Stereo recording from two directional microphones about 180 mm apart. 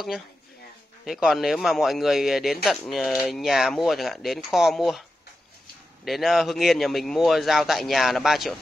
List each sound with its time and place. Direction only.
1.0 s a man's voice: centre (ahead or behind)
6.0 s a man's voice: centre (ahead or behind)